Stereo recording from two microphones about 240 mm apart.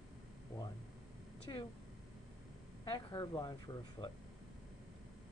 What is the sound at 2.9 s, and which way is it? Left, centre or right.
Speech, centre.